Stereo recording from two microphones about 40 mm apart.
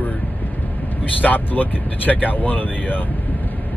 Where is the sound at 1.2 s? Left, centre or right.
Left.